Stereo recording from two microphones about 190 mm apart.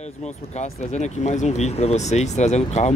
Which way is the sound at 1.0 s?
40° left (ahead or behind).